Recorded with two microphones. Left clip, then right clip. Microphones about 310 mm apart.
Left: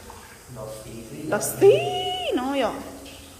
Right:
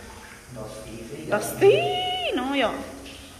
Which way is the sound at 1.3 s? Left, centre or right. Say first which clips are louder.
Left 1 dB; centre.